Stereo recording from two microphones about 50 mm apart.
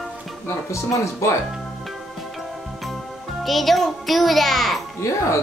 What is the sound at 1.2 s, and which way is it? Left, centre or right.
Speech, left.